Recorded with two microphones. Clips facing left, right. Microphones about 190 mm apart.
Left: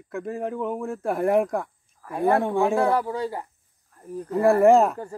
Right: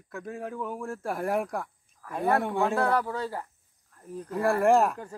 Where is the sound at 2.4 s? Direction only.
10° left (ahead or behind).